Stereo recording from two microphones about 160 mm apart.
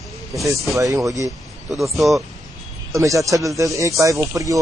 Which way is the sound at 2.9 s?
20° right (ahead or behind).